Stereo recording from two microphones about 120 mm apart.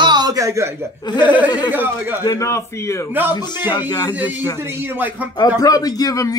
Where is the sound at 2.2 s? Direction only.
25° left (ahead or behind).